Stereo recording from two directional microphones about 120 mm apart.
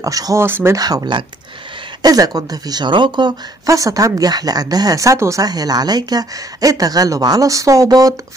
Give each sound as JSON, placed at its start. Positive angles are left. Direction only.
{"t": 0.0, "sound": "speech", "side_deg": -30}
{"t": 0.7, "sound": "speech", "side_deg": -30}
{"t": 3.6, "sound": "speech", "side_deg": -25}